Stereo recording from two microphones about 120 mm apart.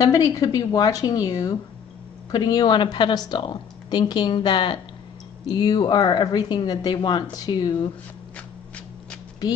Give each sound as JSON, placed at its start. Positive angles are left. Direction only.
{"t": 0.0, "sound": "a woman's voice", "side_deg": 30}